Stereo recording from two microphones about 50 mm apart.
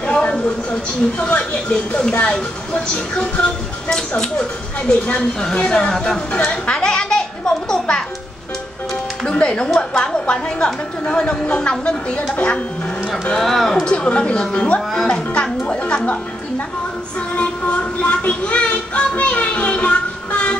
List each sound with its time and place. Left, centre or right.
0.0 s a woman's voice: left
6.4 s a sound: centre
9.3 s a woman's voice: left
13.3 s a woman's voice: centre; by 16.6 s left
17.4 s music: left